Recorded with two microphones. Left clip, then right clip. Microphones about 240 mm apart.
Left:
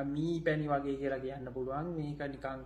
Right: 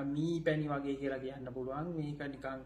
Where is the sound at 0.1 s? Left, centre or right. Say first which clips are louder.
Right 1 dB; centre.